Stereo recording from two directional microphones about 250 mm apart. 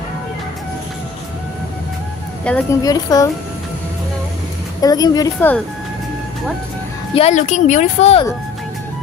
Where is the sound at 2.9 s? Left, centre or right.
Centre.